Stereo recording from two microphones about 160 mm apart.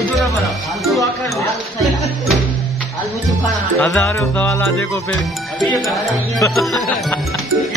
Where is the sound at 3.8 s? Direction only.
10° left (ahead or behind).